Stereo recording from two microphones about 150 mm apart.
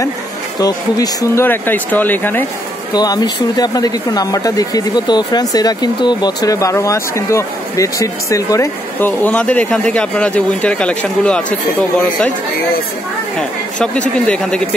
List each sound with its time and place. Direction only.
0.6 s speech: 25° left (ahead or behind)
2.9 s speech: 25° left (ahead or behind); by 11.4 s 5° left (ahead or behind)
13.4 s a woman's voice: 5° left (ahead or behind)